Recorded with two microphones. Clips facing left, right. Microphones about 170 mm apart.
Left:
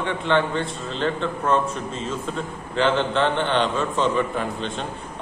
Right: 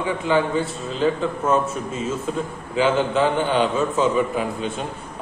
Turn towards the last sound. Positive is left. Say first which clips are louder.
# right 2 dB
turn(degrees=-5)  # may be behind; listen again after turning